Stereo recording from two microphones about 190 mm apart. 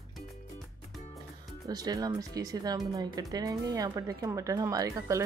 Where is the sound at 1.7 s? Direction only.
20° right (ahead or behind).